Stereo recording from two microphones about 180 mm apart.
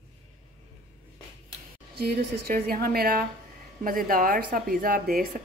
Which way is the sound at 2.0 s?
55° right (ahead or behind).